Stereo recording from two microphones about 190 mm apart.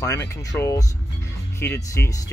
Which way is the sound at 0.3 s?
15° left (ahead or behind).